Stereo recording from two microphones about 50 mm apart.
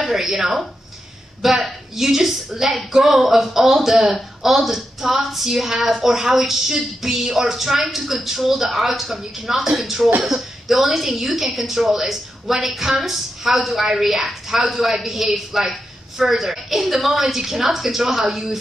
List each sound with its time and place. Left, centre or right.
0.0 s speech: centre